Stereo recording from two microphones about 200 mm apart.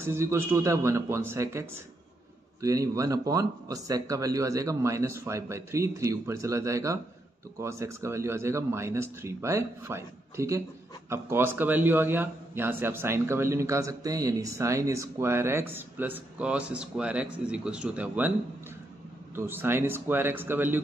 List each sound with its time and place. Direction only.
0.0 s a man's voice: 10° right (ahead or behind)
19.3 s a man's voice: 10° right (ahead or behind)